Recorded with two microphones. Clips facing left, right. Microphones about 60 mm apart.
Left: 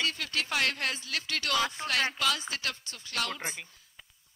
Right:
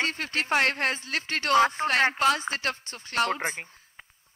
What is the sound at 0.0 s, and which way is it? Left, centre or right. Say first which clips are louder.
Speech: right 4 dB; right.